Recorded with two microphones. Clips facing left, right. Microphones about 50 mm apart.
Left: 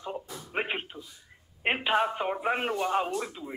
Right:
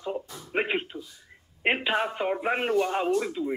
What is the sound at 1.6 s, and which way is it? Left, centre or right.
Speech, centre.